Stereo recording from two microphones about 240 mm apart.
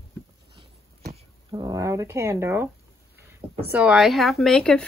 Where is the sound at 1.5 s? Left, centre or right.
Centre.